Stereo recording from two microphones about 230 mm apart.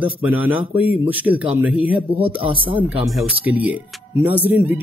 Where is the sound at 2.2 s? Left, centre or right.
Right.